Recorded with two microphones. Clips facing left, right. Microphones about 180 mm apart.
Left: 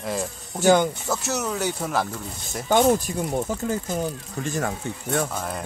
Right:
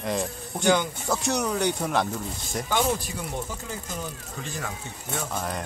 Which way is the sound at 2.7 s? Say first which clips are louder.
Left 8 dB; 45° left (ahead or behind).